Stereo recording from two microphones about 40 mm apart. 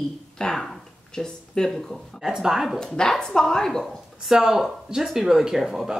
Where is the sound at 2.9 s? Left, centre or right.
Centre.